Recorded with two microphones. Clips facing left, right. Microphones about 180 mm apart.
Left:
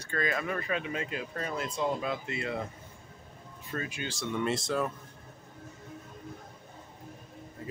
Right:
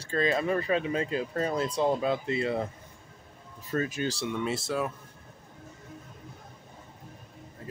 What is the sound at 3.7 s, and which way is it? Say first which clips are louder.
Speech: right 7 dB; 40° right (ahead or behind).